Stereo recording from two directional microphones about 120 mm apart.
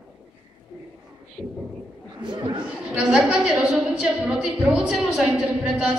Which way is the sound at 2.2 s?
35° right (ahead or behind).